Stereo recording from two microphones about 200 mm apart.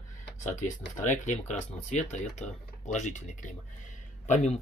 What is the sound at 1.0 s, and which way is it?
Speech, 35° left (ahead or behind).